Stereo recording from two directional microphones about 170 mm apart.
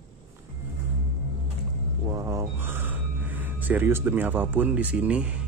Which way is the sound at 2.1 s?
20° right (ahead or behind).